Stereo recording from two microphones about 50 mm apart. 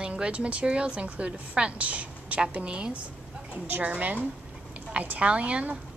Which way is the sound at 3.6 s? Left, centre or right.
Right.